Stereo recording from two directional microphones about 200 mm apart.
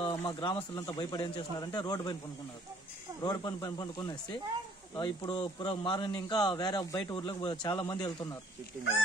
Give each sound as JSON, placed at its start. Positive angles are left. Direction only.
{"t": 0.0, "sound": "a man's voice", "side_deg": 20}
{"t": 3.2, "sound": "a man's voice", "side_deg": 20}